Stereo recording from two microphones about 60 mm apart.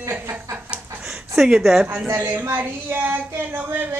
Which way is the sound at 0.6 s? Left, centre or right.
Centre.